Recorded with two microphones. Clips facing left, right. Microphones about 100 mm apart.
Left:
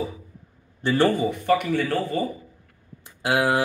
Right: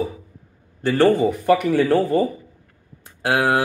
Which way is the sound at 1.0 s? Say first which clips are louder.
Right 6 dB; 65° right (ahead or behind).